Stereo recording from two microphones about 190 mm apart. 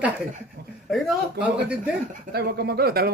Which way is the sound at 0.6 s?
55° right (ahead or behind).